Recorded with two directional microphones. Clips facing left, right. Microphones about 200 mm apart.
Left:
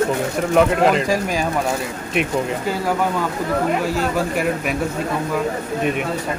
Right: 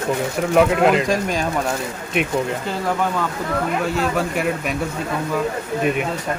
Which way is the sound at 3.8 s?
Centre (ahead or behind).